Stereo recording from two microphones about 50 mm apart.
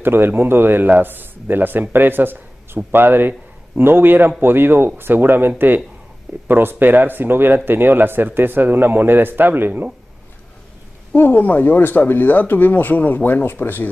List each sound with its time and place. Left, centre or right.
0.0 s a man's voice: right
11.1 s speech: left